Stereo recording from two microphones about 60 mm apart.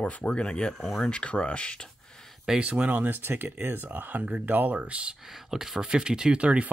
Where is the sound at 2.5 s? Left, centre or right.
Centre.